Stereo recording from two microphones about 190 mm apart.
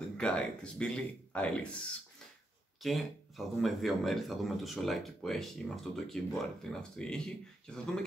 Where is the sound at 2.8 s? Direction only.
Centre (ahead or behind).